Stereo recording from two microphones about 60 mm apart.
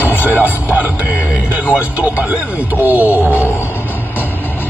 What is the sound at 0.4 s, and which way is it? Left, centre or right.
Speech, right.